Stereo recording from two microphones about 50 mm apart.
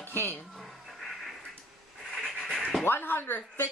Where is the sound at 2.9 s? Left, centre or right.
Left.